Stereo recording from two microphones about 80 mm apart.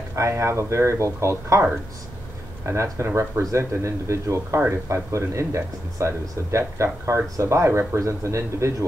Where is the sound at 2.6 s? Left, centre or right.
Right.